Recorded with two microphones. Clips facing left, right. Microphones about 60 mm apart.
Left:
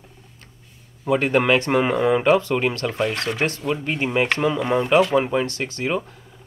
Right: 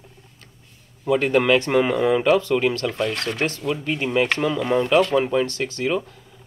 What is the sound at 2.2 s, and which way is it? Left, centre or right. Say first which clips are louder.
A man's voice: even; left.